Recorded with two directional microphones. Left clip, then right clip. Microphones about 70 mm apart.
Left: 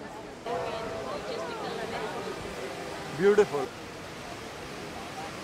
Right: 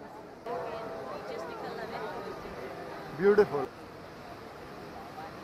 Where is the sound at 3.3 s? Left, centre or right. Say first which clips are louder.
Left 1 dB; left.